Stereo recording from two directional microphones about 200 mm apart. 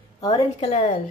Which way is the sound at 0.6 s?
30° left (ahead or behind).